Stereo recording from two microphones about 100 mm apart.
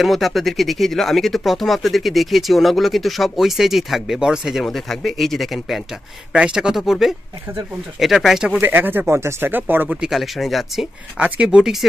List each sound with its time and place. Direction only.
0.0 s speech: centre (ahead or behind)
8.5 s speech: 20° right (ahead or behind); by 10.9 s centre (ahead or behind)
11.1 s speech: 15° right (ahead or behind)